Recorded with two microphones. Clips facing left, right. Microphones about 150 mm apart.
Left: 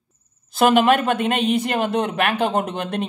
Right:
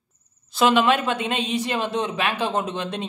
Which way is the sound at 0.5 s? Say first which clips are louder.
Left 3 dB; 50° left (ahead or behind).